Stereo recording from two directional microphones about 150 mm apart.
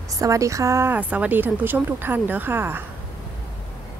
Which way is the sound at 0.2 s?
20° right (ahead or behind).